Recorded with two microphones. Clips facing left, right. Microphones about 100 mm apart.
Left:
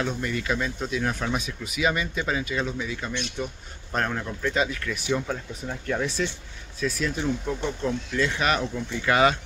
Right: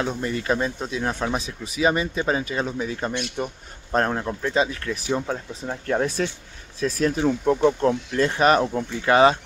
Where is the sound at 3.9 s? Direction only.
35° right (ahead or behind).